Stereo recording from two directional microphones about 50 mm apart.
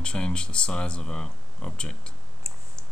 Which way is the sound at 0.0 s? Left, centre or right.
Centre.